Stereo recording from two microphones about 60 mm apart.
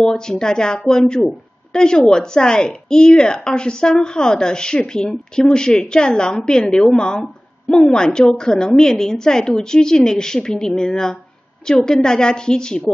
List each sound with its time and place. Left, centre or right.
0.0 s a woman's voice: centre